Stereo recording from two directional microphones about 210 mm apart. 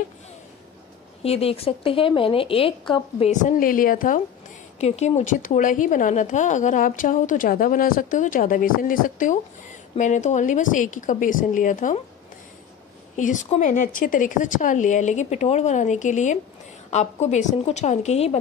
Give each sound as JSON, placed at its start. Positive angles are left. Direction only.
{"t": 1.2, "sound": "a woman's voice", "side_deg": 30}
{"t": 13.1, "sound": "a woman's voice", "side_deg": 35}